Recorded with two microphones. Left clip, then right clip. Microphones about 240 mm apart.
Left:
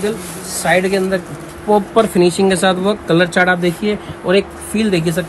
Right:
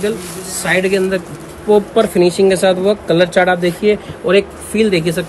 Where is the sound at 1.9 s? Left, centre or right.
Left.